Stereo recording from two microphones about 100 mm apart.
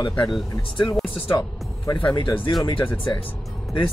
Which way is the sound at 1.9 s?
50° left (ahead or behind).